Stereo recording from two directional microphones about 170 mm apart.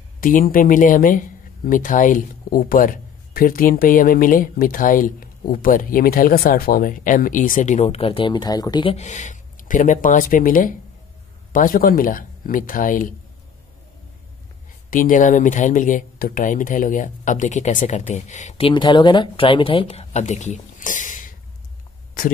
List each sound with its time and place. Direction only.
0.2 s speech: 55° left (ahead or behind); by 8.9 s 25° left (ahead or behind)
8.9 s speech: 45° left (ahead or behind)
14.9 s speech: 50° left (ahead or behind)
18.7 s speech: 30° left (ahead or behind); by 21.3 s 50° left (ahead or behind)